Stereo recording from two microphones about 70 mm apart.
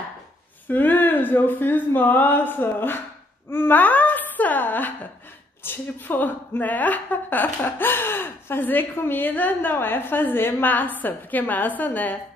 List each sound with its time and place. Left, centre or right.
0.7 s a woman's voice: left